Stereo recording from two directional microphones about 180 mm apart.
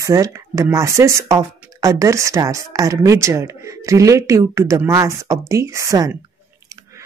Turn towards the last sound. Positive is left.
turn(degrees=-20)  # may be behind; listen again after turning